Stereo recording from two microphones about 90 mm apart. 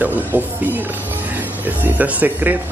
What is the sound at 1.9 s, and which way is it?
Speech, 15° right (ahead or behind).